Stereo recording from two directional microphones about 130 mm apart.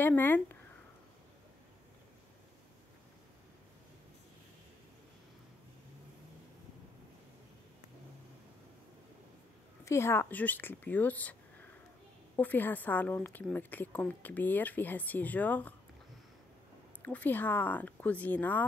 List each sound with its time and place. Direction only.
0.0 s a woman's voice: 15° left (ahead or behind)
9.8 s a woman's voice: 20° left (ahead or behind)
12.4 s a woman's voice: 15° left (ahead or behind)
17.0 s a woman's voice: 10° left (ahead or behind)